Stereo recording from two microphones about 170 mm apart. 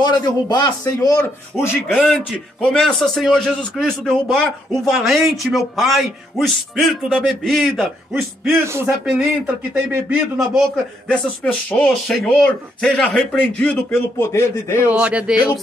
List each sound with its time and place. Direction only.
0.0 s a man's voice: 25° left (ahead or behind); by 7.9 s centre (ahead or behind)
8.6 s speech: 15° right (ahead or behind)
9.0 s a man's voice: centre (ahead or behind)
11.1 s speech: 5° left (ahead or behind)
14.9 s speech: 5° right (ahead or behind)